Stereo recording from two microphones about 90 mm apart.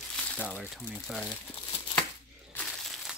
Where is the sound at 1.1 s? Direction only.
10° right (ahead or behind).